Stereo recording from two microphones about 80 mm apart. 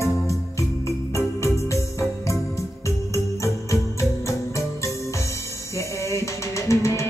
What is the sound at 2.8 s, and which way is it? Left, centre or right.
Music, left.